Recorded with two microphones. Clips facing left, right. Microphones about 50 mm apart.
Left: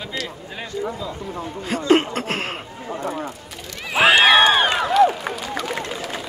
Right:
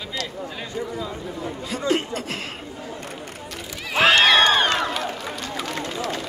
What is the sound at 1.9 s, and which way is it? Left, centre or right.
Chuckle, left.